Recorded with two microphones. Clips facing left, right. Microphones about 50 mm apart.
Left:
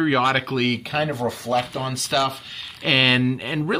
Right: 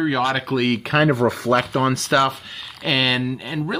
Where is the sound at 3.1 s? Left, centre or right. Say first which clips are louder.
Left 2 dB; centre.